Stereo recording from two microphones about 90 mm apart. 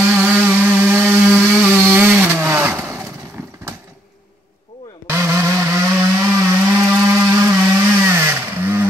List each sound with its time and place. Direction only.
0.1 s chainsaw: 15° right (ahead or behind)
5.0 s a sound: 25° right (ahead or behind)
7.2 s chainsaw: 30° right (ahead or behind)